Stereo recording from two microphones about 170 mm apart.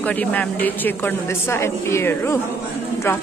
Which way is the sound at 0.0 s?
10° left (ahead or behind).